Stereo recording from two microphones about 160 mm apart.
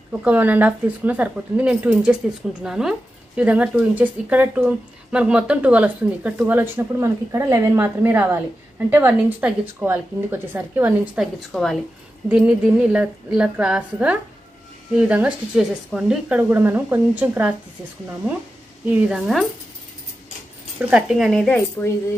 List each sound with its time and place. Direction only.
0.1 s a woman's voice: 10° right (ahead or behind)
11.3 s a woman's voice: centre (ahead or behind)
18.9 s a woman's voice: 10° right (ahead or behind)
20.9 s speech: 5° right (ahead or behind)